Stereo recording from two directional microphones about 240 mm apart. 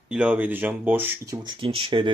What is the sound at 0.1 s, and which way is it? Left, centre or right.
Speech, centre.